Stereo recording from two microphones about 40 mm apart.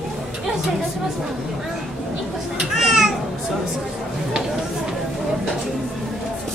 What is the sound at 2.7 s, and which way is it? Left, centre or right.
Music, centre.